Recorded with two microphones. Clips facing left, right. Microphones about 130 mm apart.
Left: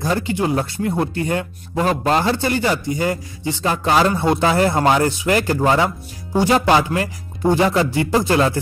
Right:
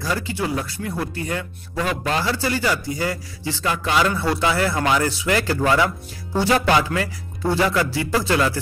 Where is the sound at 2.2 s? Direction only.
25° left (ahead or behind).